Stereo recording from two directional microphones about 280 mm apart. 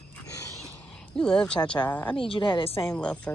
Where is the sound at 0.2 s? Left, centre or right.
Centre.